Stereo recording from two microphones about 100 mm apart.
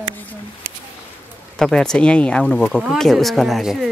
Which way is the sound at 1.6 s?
5° left (ahead or behind).